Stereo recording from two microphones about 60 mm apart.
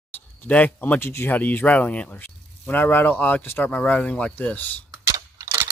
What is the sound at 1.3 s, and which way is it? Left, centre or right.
Speech, left.